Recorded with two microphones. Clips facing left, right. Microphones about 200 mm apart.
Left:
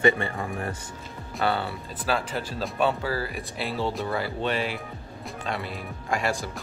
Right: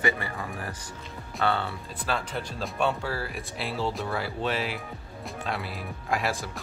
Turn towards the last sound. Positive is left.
turn(degrees=0)  # may be behind; listen again after turning